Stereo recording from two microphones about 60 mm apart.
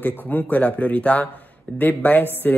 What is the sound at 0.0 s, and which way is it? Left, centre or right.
Speech, left.